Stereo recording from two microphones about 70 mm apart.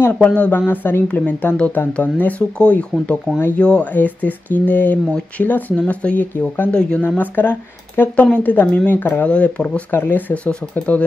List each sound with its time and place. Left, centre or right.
0.0 s speech: left
3.3 s speech: left
7.0 s speech: left
9.8 s speech: left